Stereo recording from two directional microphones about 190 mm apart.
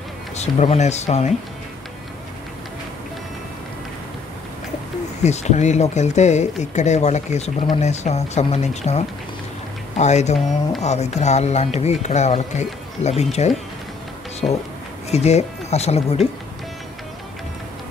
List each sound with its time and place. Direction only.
0.4 s speech: 35° left (ahead or behind)
5.2 s speech: 35° left (ahead or behind)